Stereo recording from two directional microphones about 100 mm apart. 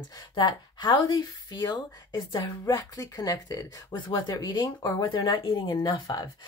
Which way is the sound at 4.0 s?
45° left (ahead or behind).